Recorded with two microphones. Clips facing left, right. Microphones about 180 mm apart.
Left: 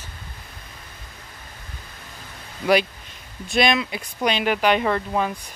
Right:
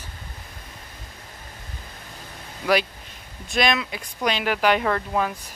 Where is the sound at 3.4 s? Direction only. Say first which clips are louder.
Left 2 dB; centre (ahead or behind).